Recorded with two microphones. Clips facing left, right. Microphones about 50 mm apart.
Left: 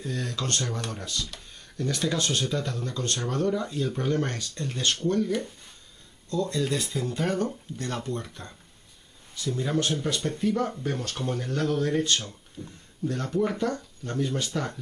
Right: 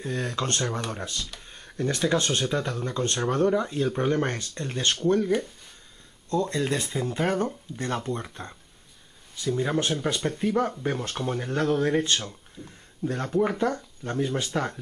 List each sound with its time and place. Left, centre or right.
0.0 s speech: right
0.7 s speech: centre
0.9 s speech: right
1.5 s a sound: right
2.0 s speech: right
6.5 s speech: right
6.9 s speech: centre
7.2 s speech: right
9.7 s speech: right
14.0 s speech: centre